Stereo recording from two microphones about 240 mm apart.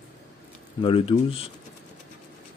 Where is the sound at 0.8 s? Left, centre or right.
Left.